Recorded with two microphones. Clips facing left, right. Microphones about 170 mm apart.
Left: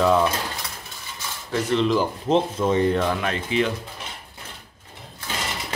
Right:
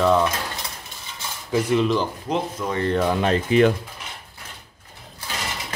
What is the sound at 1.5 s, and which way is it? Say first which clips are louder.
Speech: right 2 dB; 10° right (ahead or behind).